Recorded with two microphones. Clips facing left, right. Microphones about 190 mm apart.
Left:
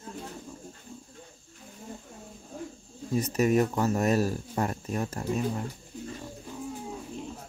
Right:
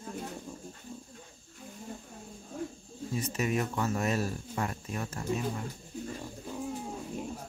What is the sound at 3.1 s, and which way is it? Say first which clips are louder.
Speech: left 7 dB; 40° left (ahead or behind).